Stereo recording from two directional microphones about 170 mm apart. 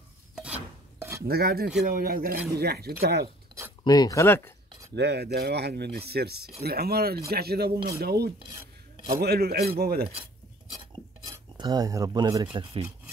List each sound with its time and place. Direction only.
1.2 s speech: 65° right (ahead or behind)
3.8 s speech: 25° left (ahead or behind)
4.9 s speech: 80° right; by 10.0 s 65° right (ahead or behind)
11.2 s speech: 20° right (ahead or behind)